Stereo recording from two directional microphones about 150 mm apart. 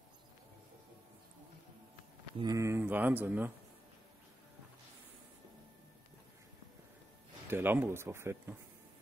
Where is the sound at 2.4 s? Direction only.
20° right (ahead or behind).